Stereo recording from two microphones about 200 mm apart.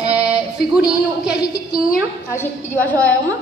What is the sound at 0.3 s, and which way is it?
A woman's voice, 5° right (ahead or behind).